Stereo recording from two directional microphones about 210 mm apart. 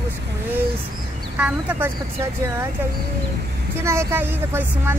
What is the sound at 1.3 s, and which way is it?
Speech, 5° right (ahead or behind).